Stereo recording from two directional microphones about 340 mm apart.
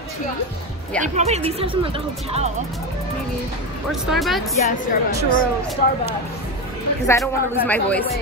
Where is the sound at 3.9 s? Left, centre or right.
Centre.